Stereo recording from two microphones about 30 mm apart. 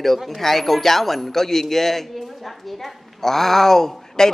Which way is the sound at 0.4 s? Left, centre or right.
Centre.